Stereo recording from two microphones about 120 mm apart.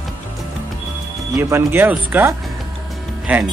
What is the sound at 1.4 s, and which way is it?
Speech, 20° right (ahead or behind).